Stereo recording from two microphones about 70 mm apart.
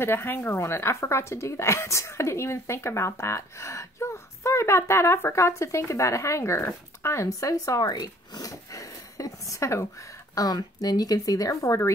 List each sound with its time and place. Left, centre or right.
0.0 s a woman's voice: left
10.3 s speech: left